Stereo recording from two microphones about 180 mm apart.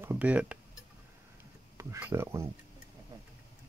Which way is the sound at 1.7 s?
15° right (ahead or behind).